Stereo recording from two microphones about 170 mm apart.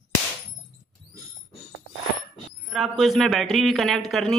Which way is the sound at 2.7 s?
Centre (ahead or behind).